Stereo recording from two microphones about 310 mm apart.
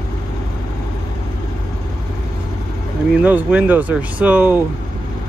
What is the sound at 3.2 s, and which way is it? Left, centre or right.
Speech, centre.